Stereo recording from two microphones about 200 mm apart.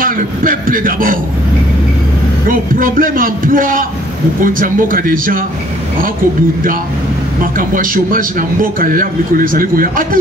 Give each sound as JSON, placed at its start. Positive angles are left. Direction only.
{"t": 0.0, "sound": "a man's voice", "side_deg": -45}
{"t": 2.5, "sound": "a man's voice", "side_deg": -45}
{"t": 7.5, "sound": "a man's voice", "side_deg": -45}